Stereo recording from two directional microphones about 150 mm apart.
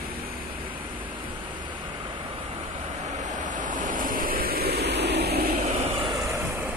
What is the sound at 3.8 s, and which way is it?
Vehicle, 65° right (ahead or behind).